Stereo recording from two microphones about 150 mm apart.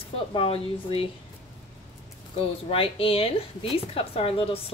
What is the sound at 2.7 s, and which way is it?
A woman's voice, 40° left (ahead or behind).